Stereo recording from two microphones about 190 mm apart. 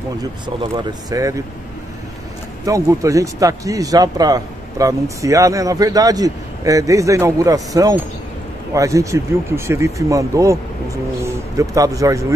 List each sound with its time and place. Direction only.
0.7 s speech: 20° right (ahead or behind)
2.6 s a man's voice: 15° right (ahead or behind)